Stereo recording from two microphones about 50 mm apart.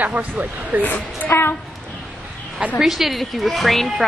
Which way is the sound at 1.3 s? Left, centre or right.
Left.